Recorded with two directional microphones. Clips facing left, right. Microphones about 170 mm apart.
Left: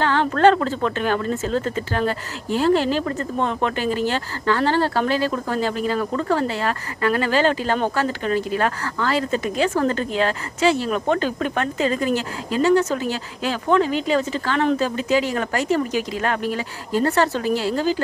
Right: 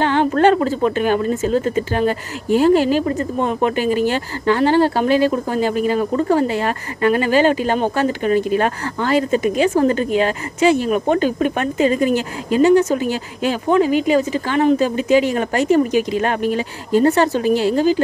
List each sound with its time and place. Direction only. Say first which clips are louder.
0.0 s speech: right 2 dB; 20° right (ahead or behind)